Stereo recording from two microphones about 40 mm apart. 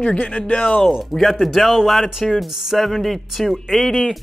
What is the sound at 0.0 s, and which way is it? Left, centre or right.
Speech, left.